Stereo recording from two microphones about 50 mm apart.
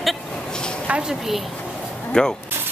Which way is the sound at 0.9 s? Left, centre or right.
Right.